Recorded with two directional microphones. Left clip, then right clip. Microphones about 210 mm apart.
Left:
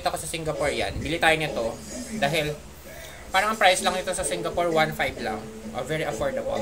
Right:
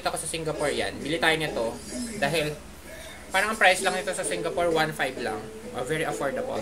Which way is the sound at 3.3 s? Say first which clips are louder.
Left 1 dB; 5° left (ahead or behind).